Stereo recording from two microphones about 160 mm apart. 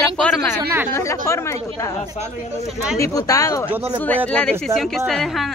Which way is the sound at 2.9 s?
20° left (ahead or behind).